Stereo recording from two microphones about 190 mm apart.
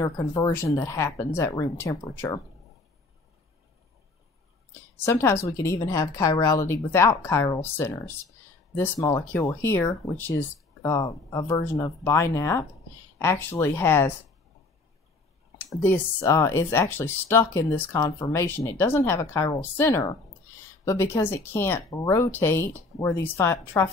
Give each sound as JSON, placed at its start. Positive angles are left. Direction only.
{"t": 0.0, "sound": "speech", "side_deg": 20}
{"t": 5.0, "sound": "speech", "side_deg": 15}
{"t": 15.8, "sound": "speech", "side_deg": 10}